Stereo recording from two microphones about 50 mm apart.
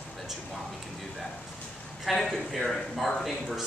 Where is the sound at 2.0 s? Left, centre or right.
Centre.